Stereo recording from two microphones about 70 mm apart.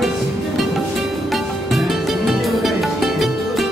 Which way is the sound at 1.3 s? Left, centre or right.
Centre.